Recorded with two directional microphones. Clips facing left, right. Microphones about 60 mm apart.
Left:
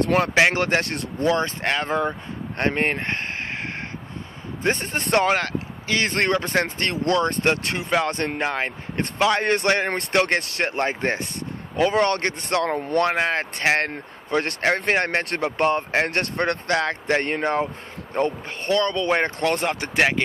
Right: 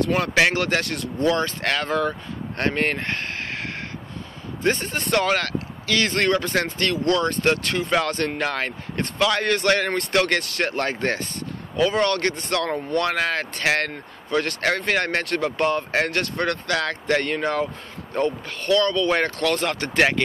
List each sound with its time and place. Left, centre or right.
0.0 s speech: left
0.3 s speech: left
4.6 s speech: left